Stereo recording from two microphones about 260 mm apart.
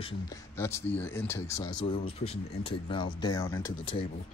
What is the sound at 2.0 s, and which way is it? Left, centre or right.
Speech, left.